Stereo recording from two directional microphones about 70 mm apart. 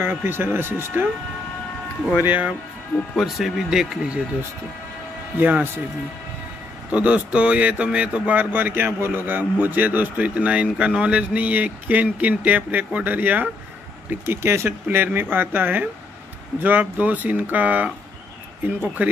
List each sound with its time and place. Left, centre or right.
0.0 s speech: right
2.2 s speech: right
3.2 s speech: centre
5.4 s speech: right
6.9 s speech: centre
14.2 s speech: right
19.0 s speech: right